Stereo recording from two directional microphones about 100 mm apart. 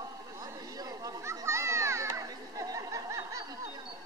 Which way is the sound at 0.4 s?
40° right (ahead or behind).